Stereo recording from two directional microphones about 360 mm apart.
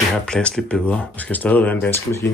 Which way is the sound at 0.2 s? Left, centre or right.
Centre.